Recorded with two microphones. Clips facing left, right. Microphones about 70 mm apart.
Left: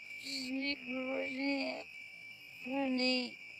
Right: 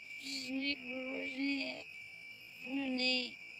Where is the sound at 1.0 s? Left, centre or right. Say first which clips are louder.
Left 4 dB; left.